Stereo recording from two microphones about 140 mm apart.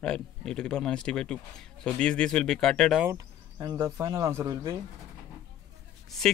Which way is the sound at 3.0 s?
25° right (ahead or behind).